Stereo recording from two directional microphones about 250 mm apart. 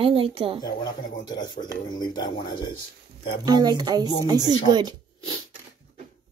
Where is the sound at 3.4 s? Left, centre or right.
Centre.